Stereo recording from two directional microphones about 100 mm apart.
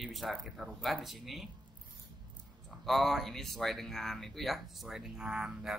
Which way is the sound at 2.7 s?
Centre (ahead or behind).